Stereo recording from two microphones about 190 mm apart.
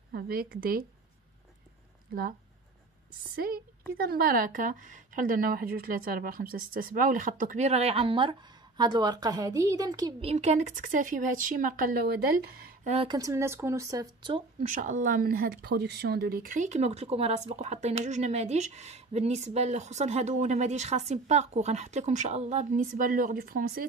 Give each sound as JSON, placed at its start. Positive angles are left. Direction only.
{"t": 0.1, "sound": "a woman's voice", "side_deg": -55}
{"t": 3.3, "sound": "a woman's voice", "side_deg": -55}
{"t": 10.3, "sound": "a woman's voice", "side_deg": -35}
{"t": 12.9, "sound": "speech", "side_deg": -25}
{"t": 14.6, "sound": "speech", "side_deg": -40}